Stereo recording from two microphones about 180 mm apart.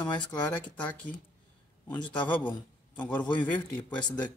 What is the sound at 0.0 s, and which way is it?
Speech, 20° left (ahead or behind).